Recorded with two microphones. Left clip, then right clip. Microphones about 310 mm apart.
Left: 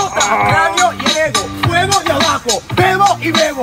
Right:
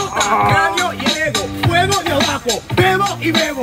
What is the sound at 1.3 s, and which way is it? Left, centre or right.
Speech, centre.